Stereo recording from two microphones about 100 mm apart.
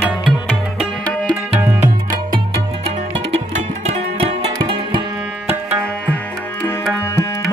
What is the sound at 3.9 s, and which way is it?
Music, 85° right.